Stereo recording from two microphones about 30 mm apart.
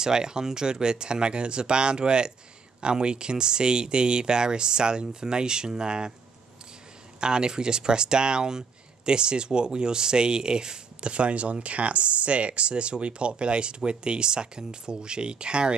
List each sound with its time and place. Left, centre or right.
0.0 s speech: right
7.2 s speech: right